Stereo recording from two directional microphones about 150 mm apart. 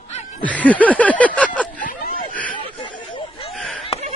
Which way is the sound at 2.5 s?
35° left (ahead or behind).